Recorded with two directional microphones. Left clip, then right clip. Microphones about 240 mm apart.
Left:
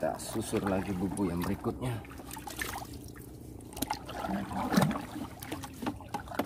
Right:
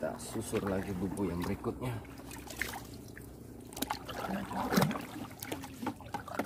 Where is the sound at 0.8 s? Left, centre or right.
Left.